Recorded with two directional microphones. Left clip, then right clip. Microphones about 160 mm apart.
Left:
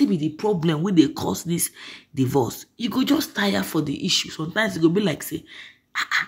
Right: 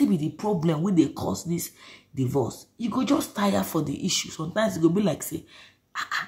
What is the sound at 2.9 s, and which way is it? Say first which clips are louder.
Speech: left 3 dB; 15° left (ahead or behind).